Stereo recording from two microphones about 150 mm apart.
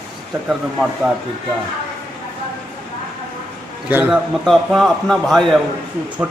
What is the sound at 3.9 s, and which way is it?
A man's voice, 5° right (ahead or behind).